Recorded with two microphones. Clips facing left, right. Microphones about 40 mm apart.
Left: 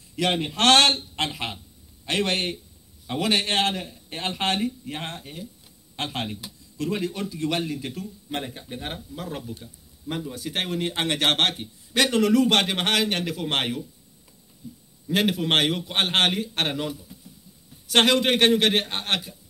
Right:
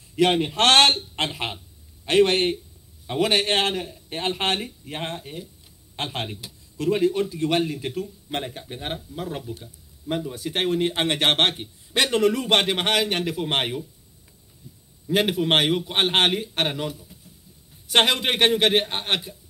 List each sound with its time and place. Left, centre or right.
0.3 s speech: centre
0.6 s speech: right
3.7 s speech: centre
5.2 s speech: centre
5.9 s speech: centre
6.4 s speech: right
8.8 s speech: centre
15.0 s speech: centre
17.8 s speech: centre